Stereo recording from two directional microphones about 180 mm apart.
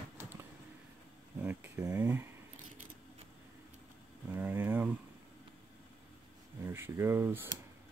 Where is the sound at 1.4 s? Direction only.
15° right (ahead or behind).